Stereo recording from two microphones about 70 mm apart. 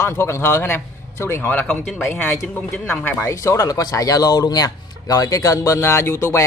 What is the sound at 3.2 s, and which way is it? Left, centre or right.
A man's voice, left.